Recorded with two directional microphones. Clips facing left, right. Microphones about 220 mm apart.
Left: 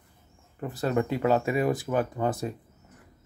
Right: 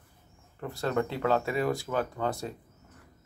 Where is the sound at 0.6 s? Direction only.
15° left (ahead or behind).